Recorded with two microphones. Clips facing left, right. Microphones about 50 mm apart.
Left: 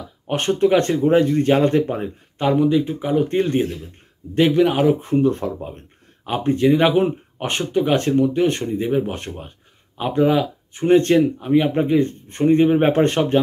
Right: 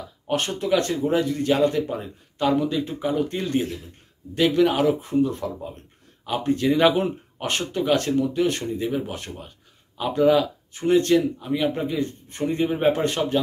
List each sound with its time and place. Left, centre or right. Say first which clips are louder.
0.3 s speech: left 6 dB; left
2.5 s speech: left 6 dB; centre
5.1 s speech: left 4 dB; left